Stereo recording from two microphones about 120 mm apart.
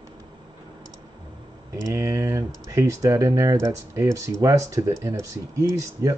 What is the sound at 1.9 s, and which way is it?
Speech, 25° right (ahead or behind).